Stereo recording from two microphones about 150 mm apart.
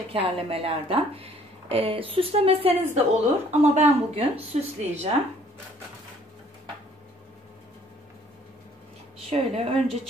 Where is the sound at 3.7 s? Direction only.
40° right (ahead or behind).